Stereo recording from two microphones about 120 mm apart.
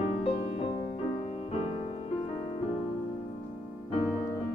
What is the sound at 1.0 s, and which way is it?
Music, 65° left (ahead or behind).